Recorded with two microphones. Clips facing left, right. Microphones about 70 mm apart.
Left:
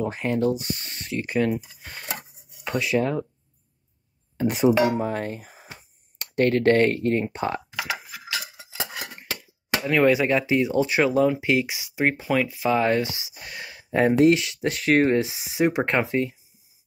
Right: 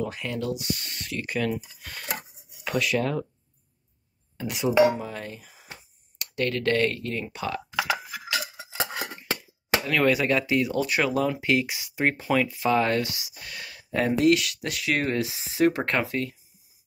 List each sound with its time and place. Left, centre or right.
0.0 s speech: left
4.4 s speech: left
4.9 s dishes: left
6.1 s speech: left
8.7 s a sound: right
9.8 s speech: centre
15.3 s speech: centre